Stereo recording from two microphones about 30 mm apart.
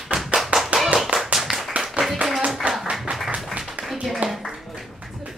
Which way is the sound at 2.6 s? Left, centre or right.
Right.